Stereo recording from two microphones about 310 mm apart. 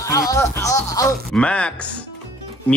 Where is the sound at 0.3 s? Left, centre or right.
Centre.